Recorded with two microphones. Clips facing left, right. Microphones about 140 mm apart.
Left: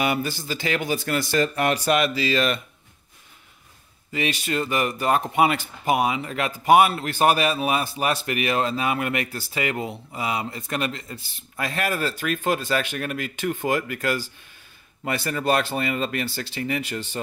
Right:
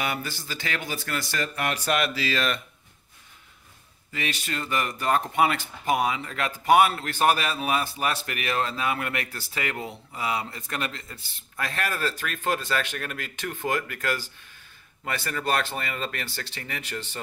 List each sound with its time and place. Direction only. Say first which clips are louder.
0.0 s speech: left 6 dB; 15° left (ahead or behind)
1.9 s speech: left 5 dB; 5° left (ahead or behind)
4.1 s speech: left 6 dB; 20° left (ahead or behind)
15.2 s speech: left 4 dB; 20° left (ahead or behind)